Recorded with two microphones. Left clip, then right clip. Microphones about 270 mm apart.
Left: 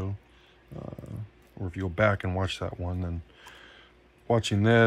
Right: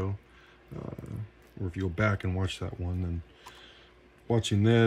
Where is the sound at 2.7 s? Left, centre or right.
Left.